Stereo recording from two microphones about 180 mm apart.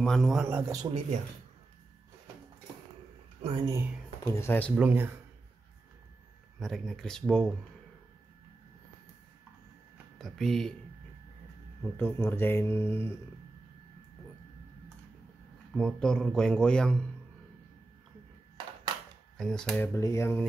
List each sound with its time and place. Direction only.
0.0 s speech: centre (ahead or behind)
0.5 s speech: 15° right (ahead or behind)
3.6 s speech: 15° right (ahead or behind)
4.2 s speech: 15° left (ahead or behind)
4.7 s speech: 10° right (ahead or behind)
6.6 s speech: centre (ahead or behind)
10.1 s speech: centre (ahead or behind)
11.8 s speech: 10° left (ahead or behind)
15.7 s speech: 5° left (ahead or behind)
19.3 s speech: 5° left (ahead or behind)
19.9 s speech: 15° left (ahead or behind)